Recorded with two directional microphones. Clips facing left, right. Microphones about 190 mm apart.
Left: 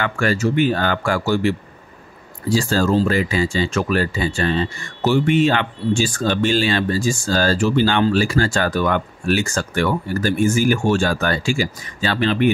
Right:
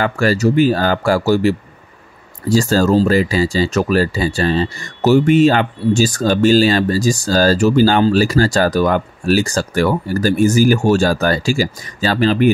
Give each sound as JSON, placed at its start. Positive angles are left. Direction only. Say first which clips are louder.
{"t": 0.0, "sound": "speech", "louder": "right 5 dB", "side_deg": -35}